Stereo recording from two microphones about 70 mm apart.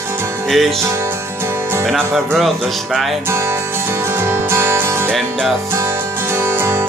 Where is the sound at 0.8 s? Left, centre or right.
Right.